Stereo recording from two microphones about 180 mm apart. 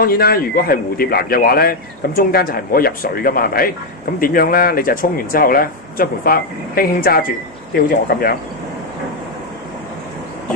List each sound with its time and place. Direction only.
0.0 s a man's voice: 55° left (ahead or behind)